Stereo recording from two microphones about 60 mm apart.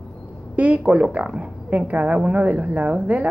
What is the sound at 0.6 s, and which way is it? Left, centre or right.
A woman's voice, right.